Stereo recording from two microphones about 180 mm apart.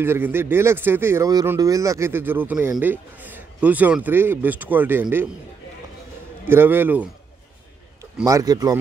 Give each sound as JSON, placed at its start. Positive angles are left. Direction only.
{"t": 0.0, "sound": "speech", "side_deg": -10}
{"t": 6.4, "sound": "speech", "side_deg": -10}
{"t": 8.3, "sound": "speech", "side_deg": -20}